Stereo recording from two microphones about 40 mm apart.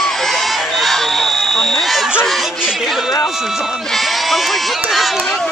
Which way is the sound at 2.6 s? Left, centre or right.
Centre.